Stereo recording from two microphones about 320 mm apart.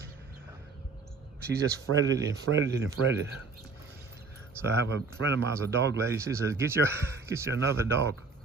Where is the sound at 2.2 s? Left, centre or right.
Right.